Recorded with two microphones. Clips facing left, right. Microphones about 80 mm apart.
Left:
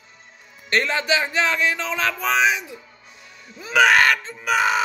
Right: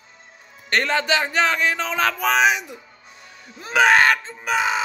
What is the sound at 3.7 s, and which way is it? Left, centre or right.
Speech, right.